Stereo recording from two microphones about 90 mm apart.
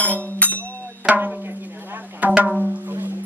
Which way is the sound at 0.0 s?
20° left (ahead or behind).